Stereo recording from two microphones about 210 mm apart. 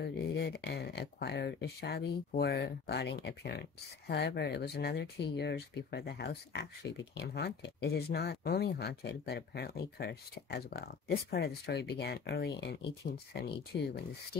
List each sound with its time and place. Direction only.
0.0 s speech: 50° left (ahead or behind)